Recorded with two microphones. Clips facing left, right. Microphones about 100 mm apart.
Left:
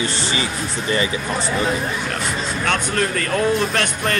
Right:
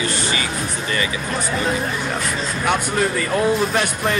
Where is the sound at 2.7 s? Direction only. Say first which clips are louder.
Right 2 dB; 10° right (ahead or behind).